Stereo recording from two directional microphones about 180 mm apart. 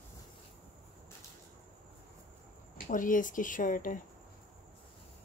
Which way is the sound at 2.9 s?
45° left (ahead or behind).